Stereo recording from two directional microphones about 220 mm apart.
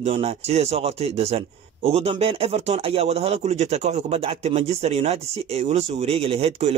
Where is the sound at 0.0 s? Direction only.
25° right (ahead or behind).